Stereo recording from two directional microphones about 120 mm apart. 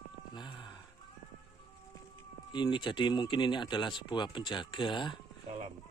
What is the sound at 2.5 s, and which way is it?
Speech, 40° left (ahead or behind).